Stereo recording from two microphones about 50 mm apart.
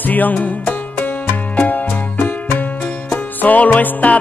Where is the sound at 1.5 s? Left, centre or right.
Left.